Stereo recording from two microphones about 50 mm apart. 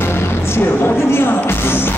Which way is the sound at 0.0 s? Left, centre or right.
Left.